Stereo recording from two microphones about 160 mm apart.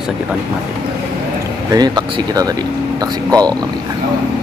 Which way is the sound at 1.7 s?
25° right (ahead or behind).